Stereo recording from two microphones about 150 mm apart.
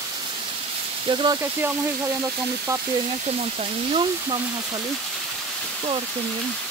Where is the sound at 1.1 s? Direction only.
35° right (ahead or behind).